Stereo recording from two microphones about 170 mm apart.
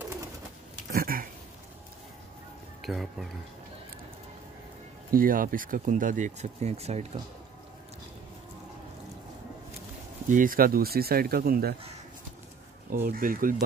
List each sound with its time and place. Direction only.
0.9 s speech: 60° right (ahead or behind)
2.8 s speech: centre (ahead or behind)
5.1 s speech: 55° right (ahead or behind); by 7.1 s 40° right (ahead or behind)
10.2 s speech: 50° right (ahead or behind)
12.9 s speech: 60° right (ahead or behind)